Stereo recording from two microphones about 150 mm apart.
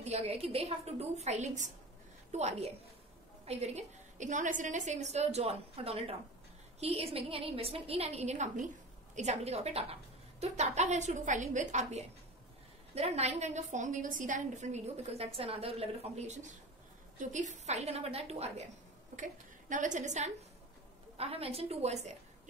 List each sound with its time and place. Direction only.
0.0 s a woman's voice: 45° right (ahead or behind)
19.1 s a woman's voice: 60° right (ahead or behind)
21.2 s a woman's voice: 40° right (ahead or behind)